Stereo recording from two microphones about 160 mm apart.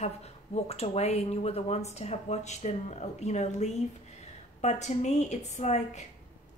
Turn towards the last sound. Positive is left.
turn(degrees=45)  # may be behind; listen again after turning